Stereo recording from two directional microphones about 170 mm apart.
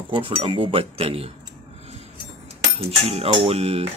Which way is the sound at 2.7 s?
35° right (ahead or behind).